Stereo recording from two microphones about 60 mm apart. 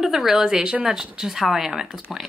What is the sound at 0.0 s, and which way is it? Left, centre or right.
Speech, centre.